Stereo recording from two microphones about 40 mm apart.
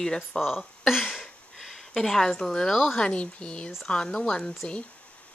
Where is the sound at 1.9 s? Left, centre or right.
Centre.